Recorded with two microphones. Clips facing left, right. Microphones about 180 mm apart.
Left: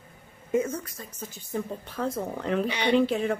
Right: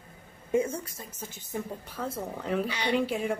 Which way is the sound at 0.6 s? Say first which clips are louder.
Left 2 dB; 10° right (ahead or behind).